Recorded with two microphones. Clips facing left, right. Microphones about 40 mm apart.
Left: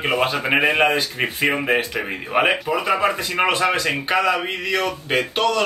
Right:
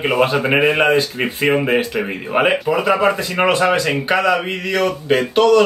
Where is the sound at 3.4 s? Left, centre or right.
Centre.